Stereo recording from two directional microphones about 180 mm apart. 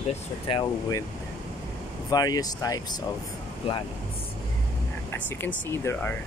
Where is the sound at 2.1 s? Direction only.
20° left (ahead or behind).